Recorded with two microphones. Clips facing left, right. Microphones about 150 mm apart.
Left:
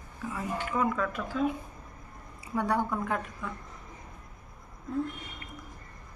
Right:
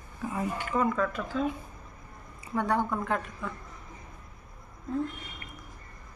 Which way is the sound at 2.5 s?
10° left (ahead or behind).